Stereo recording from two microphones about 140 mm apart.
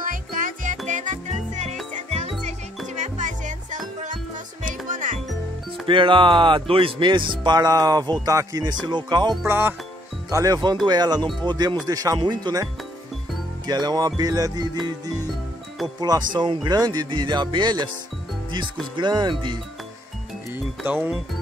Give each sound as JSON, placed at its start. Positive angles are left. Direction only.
{"t": 0.0, "sound": "music", "side_deg": -75}
{"t": 5.9, "sound": "speech", "side_deg": -35}
{"t": 9.5, "sound": "speech", "side_deg": -15}
{"t": 10.3, "sound": "music", "side_deg": -25}
{"t": 10.9, "sound": "speech", "side_deg": -30}
{"t": 11.4, "sound": "music", "side_deg": -30}
{"t": 13.7, "sound": "music", "side_deg": -30}
{"t": 16.0, "sound": "speech", "side_deg": -30}
{"t": 18.9, "sound": "speech", "side_deg": -30}
{"t": 20.5, "sound": "music", "side_deg": -10}